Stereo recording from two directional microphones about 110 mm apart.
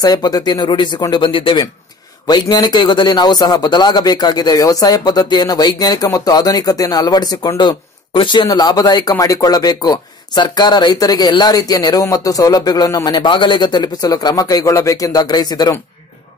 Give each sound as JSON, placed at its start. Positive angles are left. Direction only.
{"t": 0.0, "sound": "speech", "side_deg": 35}
{"t": 2.2, "sound": "speech", "side_deg": 40}
{"t": 8.5, "sound": "speech", "side_deg": 35}